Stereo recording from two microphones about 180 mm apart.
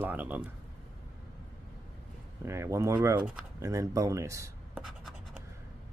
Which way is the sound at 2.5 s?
15° right (ahead or behind).